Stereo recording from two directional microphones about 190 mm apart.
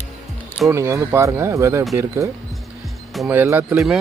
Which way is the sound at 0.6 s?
15° right (ahead or behind).